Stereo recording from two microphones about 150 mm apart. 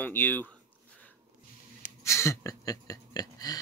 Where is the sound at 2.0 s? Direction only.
20° left (ahead or behind).